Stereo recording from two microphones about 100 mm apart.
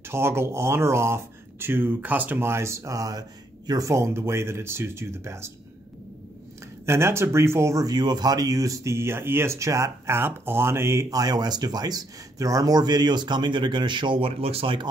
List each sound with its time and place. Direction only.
0.1 s speech: 25° right (ahead or behind)
6.9 s speech: 25° right (ahead or behind); by 14.8 s 75° right (ahead or behind)